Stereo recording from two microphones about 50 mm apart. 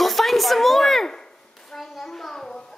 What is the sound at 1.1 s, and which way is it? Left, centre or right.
Hands, centre.